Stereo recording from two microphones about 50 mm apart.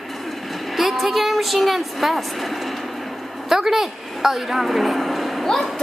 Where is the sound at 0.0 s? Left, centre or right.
Centre.